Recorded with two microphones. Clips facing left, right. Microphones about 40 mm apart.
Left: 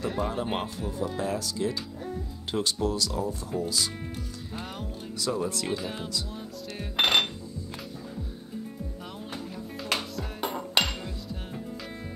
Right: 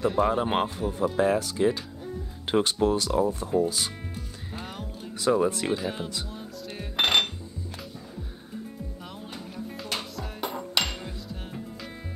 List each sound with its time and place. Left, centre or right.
0.3 s a man's voice: right
0.9 s speech: right
5.2 s a man's voice: right
5.7 s speech: centre
6.8 s cutlery: centre
9.9 s music: centre